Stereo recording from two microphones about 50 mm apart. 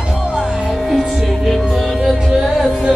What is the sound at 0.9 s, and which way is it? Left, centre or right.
Music, centre.